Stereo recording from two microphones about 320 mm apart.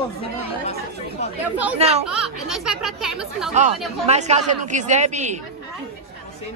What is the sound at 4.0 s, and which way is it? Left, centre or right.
Speech, right.